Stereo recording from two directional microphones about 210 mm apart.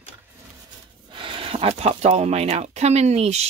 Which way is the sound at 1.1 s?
25° right (ahead or behind).